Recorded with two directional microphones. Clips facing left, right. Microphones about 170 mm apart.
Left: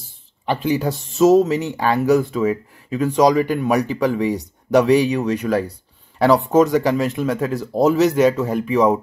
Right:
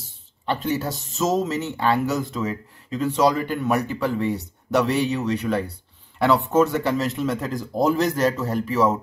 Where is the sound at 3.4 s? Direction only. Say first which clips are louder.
Left 4 dB; 10° left (ahead or behind).